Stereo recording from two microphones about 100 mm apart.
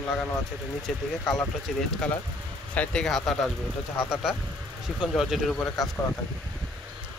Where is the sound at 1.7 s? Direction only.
Centre (ahead or behind).